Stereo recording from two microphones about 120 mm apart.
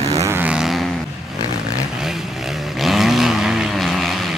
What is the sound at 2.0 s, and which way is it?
Vehicle, 5° right (ahead or behind).